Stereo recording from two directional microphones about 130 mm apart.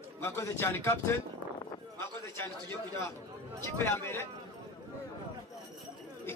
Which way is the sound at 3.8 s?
20° left (ahead or behind).